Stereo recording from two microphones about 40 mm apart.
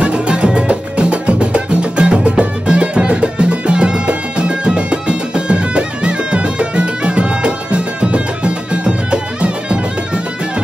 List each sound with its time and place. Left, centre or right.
0.0 s music: right